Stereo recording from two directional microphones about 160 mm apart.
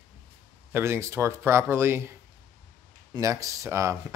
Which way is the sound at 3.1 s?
20° right (ahead or behind).